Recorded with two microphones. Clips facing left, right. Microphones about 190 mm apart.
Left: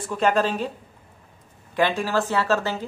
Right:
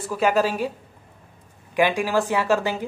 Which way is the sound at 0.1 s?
5° right (ahead or behind).